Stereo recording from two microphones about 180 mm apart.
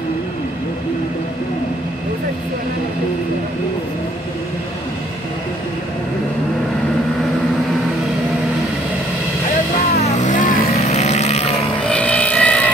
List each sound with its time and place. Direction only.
10.0 s vehicle: 40° left (ahead or behind)
11.9 s vehicle: 5° left (ahead or behind)